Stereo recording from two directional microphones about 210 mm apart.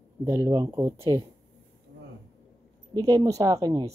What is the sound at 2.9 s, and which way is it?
Speech, 15° right (ahead or behind).